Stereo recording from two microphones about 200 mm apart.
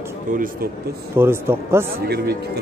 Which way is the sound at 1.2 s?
10° right (ahead or behind).